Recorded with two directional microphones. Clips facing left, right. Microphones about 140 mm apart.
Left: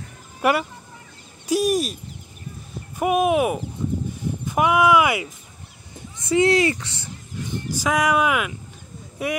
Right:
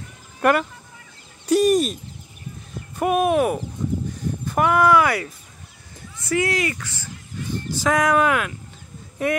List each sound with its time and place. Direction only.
0.4 s speech: 5° left (ahead or behind)
1.5 s a sound: 5° left (ahead or behind)
3.0 s speech: 10° left (ahead or behind)